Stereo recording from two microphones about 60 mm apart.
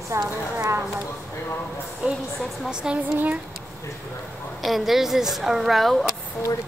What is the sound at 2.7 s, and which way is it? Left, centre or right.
Speech, centre.